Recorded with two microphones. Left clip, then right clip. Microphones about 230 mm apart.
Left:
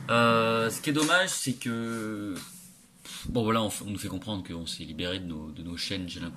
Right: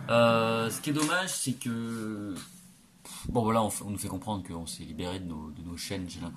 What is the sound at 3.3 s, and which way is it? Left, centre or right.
Speech, right.